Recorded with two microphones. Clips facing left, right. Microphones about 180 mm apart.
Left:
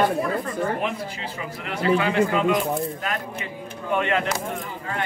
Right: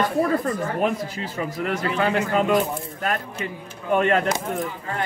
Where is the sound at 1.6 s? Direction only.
45° right (ahead or behind).